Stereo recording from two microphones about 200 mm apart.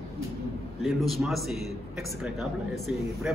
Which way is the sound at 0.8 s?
Centre (ahead or behind).